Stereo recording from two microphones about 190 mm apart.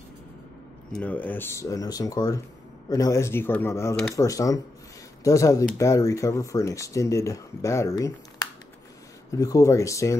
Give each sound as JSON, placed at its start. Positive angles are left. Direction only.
{"t": 0.9, "sound": "speech", "side_deg": 10}
{"t": 9.3, "sound": "speech", "side_deg": 20}